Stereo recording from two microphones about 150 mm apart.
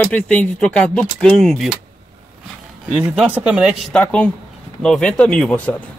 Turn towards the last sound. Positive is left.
turn(degrees=10)  # may be behind; listen again after turning